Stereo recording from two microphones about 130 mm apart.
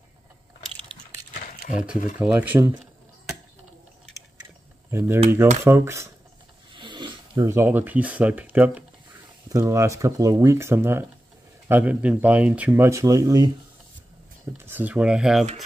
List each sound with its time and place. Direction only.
1.3 s a sound: 70° left (ahead or behind)
2.1 s speech: 10° right (ahead or behind)
4.9 s speech: 20° right (ahead or behind)
6.7 s a sound: 35° right (ahead or behind)
7.4 s speech: 20° right (ahead or behind)
9.5 s speech: 25° right (ahead or behind)
14.6 s speech: 15° right (ahead or behind)